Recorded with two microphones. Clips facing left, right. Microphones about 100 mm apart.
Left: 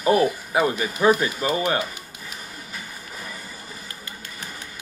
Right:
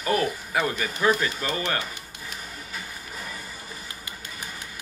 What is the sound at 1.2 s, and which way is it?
Speech, 15° left (ahead or behind).